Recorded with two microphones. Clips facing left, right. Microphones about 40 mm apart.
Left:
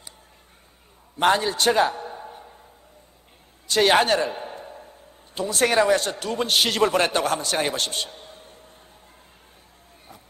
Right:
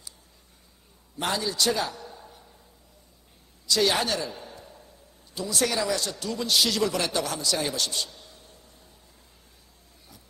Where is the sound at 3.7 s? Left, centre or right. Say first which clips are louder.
Left 6 dB; left.